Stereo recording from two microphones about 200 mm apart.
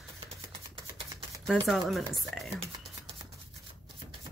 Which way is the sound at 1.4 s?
Centre (ahead or behind).